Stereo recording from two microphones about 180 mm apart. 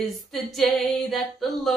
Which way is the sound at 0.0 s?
Centre (ahead or behind).